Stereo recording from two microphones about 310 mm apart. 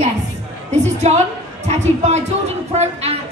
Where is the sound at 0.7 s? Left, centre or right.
Right.